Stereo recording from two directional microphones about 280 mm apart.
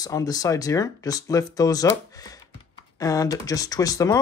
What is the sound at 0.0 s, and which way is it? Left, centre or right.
Speech, centre.